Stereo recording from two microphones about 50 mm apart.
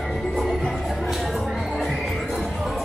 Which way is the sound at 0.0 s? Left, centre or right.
Centre.